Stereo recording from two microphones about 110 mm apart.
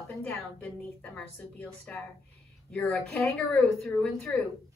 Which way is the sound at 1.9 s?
10° left (ahead or behind).